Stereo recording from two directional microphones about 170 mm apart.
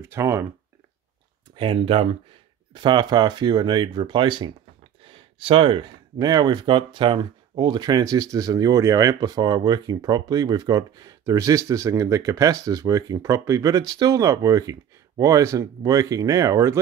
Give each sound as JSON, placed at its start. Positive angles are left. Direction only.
{"t": 0.0, "sound": "speech", "side_deg": -15}
{"t": 1.6, "sound": "speech", "side_deg": -30}